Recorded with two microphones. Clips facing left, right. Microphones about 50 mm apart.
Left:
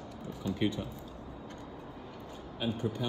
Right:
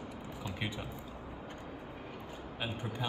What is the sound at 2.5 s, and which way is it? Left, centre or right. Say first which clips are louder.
Speech: left 6 dB; right.